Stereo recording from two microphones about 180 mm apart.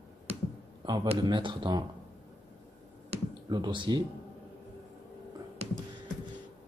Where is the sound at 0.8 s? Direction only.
25° right (ahead or behind).